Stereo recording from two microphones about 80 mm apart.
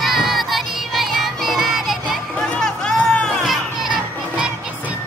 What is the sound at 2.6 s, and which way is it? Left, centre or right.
Music, centre.